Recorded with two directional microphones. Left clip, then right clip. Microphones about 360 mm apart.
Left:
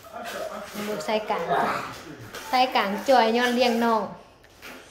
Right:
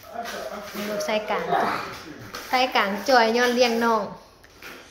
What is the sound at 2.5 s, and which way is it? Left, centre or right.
A woman's voice, centre.